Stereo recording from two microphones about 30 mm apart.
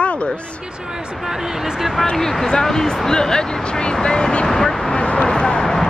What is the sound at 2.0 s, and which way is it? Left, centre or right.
Speech, left.